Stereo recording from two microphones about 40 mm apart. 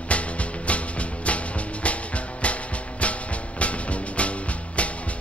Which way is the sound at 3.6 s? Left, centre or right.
Left.